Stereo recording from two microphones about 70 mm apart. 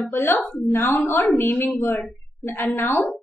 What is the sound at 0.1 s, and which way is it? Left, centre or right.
A woman's voice, left.